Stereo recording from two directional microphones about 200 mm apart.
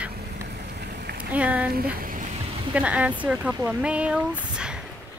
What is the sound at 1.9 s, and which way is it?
Vehicle, 45° right (ahead or behind).